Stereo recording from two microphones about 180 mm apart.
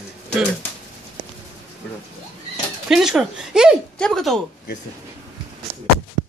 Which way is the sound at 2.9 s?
Centre (ahead or behind).